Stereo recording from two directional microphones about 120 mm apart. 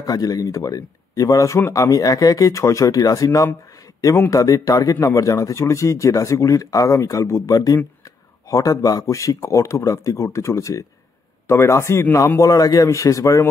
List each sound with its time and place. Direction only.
0.0 s speech: 30° left (ahead or behind)